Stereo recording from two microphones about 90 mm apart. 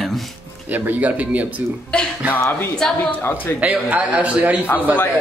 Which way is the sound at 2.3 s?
25° left (ahead or behind).